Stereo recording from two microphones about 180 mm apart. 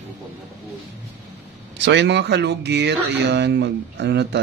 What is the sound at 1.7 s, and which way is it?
Speech, 70° right (ahead or behind).